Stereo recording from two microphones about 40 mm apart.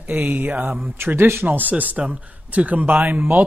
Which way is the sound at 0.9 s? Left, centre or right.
Right.